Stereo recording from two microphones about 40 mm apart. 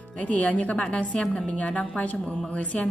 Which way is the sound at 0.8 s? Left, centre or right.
Left.